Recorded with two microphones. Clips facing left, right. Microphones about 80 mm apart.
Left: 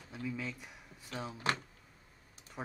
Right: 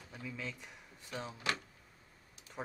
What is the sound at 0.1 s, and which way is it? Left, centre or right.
Speech, centre.